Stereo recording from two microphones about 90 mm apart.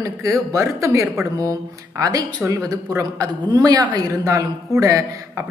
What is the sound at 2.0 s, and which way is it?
Speech, 45° right (ahead or behind).